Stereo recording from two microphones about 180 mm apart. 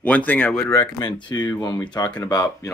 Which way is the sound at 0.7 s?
25° left (ahead or behind).